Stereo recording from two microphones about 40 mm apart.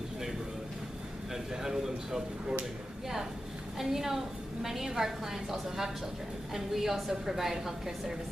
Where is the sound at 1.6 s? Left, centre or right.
Centre.